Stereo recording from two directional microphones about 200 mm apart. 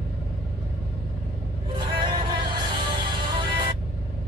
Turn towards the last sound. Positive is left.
turn(degrees=-25)  # may be behind; listen again after turning